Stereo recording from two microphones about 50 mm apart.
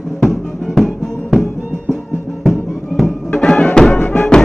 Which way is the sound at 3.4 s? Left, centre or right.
Left.